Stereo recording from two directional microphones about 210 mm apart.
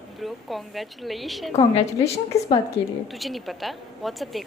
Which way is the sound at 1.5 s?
30° left (ahead or behind).